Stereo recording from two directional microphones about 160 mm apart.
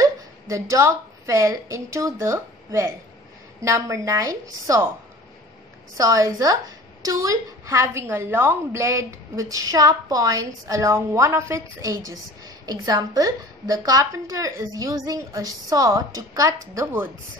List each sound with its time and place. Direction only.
0.0 s a woman's voice: 20° right (ahead or behind)
5.9 s a woman's voice: 20° right (ahead or behind)